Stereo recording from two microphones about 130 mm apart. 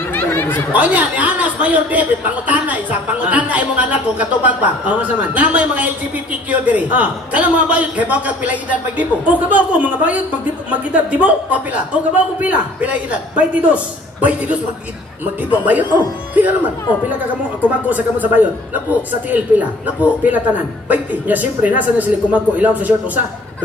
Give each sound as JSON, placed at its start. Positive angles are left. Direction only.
{"t": 0.1, "sound": "chatter", "side_deg": 15}
{"t": 0.7, "sound": "speech", "side_deg": -10}
{"t": 15.6, "sound": "speech", "side_deg": -10}
{"t": 17.6, "sound": "speech", "side_deg": -15}